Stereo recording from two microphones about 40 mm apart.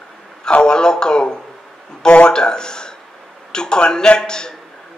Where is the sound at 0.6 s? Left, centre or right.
Centre.